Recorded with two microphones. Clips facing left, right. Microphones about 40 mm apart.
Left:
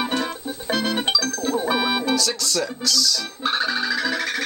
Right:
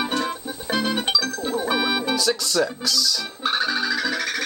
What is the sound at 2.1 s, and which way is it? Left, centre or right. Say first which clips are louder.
Speech: even; centre.